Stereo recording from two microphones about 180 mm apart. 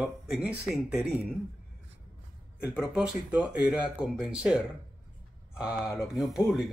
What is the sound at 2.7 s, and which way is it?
Speech, 5° right (ahead or behind).